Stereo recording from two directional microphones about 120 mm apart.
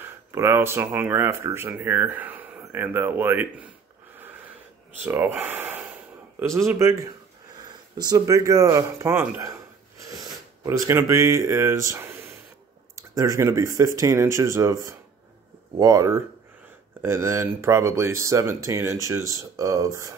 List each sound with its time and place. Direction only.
0.0 s speech: 25° right (ahead or behind)
4.9 s speech: 15° right (ahead or behind)
9.4 s a sound: 25° right (ahead or behind)
12.9 s speech: 25° right (ahead or behind)